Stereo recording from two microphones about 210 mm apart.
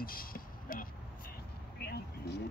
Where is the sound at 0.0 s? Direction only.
45° left (ahead or behind).